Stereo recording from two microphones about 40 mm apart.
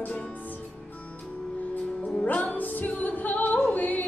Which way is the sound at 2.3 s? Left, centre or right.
Left.